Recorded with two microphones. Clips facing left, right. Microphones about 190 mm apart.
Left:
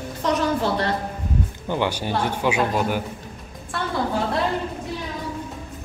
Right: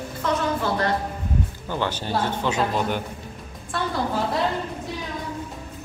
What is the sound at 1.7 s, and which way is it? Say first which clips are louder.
Speech: left 3 dB; 15° left (ahead or behind).